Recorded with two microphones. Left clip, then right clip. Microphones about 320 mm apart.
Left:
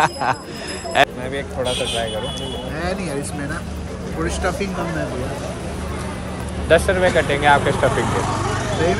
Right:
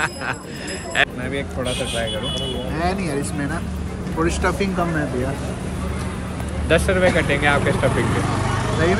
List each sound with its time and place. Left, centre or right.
0.0 s speech: centre
4.2 s speech: centre
6.7 s speech: centre